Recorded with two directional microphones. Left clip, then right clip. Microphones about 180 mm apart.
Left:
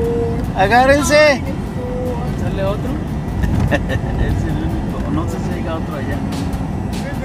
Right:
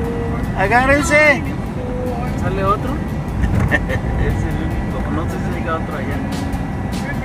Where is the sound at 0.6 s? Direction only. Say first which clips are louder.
Left 2 dB; 35° left (ahead or behind).